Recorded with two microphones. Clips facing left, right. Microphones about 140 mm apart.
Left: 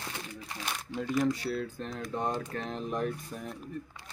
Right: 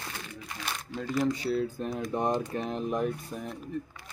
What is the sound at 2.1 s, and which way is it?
Speech, 15° right (ahead or behind).